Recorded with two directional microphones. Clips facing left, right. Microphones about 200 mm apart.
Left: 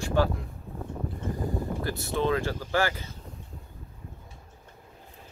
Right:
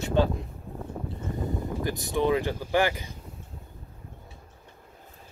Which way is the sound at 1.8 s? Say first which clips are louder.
Right 3 dB; 15° right (ahead or behind).